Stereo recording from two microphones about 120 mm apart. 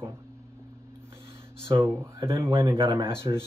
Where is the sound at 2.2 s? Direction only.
20° right (ahead or behind).